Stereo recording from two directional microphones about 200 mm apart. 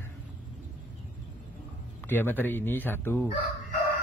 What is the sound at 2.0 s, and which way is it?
A man's voice, 10° left (ahead or behind).